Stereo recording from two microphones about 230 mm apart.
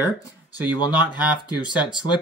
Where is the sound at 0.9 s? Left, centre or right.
Centre.